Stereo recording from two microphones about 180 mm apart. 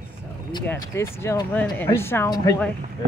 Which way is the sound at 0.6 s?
15° left (ahead or behind).